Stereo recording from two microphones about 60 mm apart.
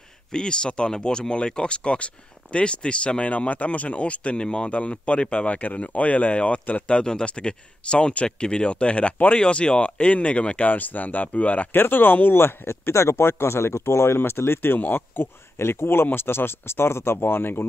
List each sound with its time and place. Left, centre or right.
0.3 s speech: centre
11.7 s speech: left